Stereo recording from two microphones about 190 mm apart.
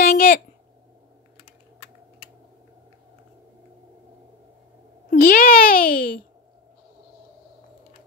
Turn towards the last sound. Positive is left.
turn(degrees=50)  # may be behind; listen again after turning